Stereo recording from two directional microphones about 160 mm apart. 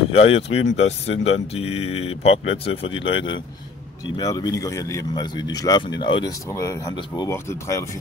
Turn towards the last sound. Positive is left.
turn(degrees=20)  # may be behind; listen again after turning